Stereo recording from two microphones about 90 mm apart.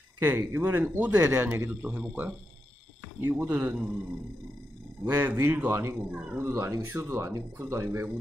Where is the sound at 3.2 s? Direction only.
20° right (ahead or behind).